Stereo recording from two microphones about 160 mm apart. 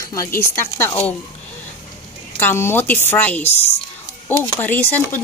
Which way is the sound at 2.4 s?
15° left (ahead or behind).